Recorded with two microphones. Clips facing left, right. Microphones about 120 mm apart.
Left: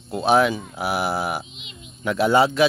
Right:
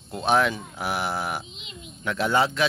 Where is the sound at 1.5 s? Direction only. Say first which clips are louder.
Right 1 dB; 35° right (ahead or behind).